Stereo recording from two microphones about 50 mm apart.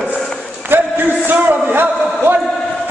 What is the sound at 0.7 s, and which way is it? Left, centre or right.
A man's voice, right.